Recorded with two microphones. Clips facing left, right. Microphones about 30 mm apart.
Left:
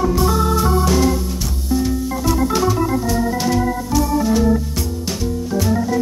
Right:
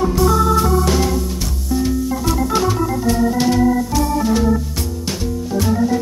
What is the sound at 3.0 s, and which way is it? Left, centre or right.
Organ, centre.